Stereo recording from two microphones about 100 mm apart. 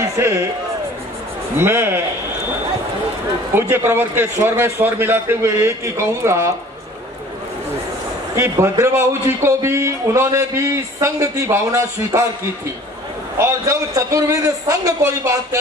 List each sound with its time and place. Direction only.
0.0 s a man's voice: 30° right (ahead or behind)
1.6 s a man's voice: 25° right (ahead or behind)
3.5 s a man's voice: 25° right (ahead or behind)
8.4 s a man's voice: 30° right (ahead or behind)
13.4 s a man's voice: 30° right (ahead or behind)